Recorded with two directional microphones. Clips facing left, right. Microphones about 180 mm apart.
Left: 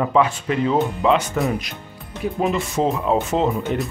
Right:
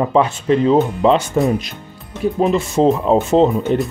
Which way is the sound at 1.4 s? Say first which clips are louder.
Right 5 dB; 25° right (ahead or behind).